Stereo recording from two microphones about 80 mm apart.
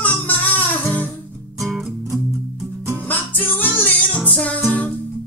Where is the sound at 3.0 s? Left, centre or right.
Left.